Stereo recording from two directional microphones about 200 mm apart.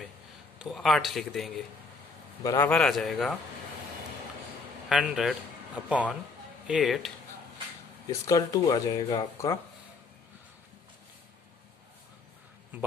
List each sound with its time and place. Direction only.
0.6 s speech: centre (ahead or behind)
2.4 s speech: 15° left (ahead or behind)
4.8 s a man's voice: centre (ahead or behind)
8.1 s speech: 15° left (ahead or behind)